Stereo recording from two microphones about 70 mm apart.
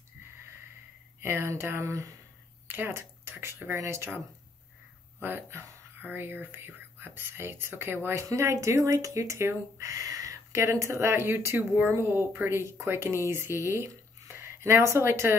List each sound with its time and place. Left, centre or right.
1.2 s speech: right
2.7 s speech: right
3.7 s speech: right
5.2 s speech: right